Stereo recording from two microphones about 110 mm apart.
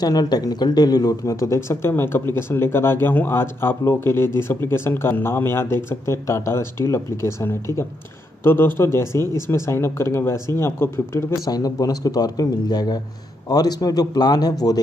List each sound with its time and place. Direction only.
0.0 s speech: 35° left (ahead or behind)
11.4 s speech: 35° left (ahead or behind)